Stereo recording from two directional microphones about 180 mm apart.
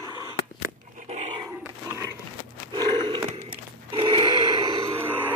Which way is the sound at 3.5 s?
25° right (ahead or behind).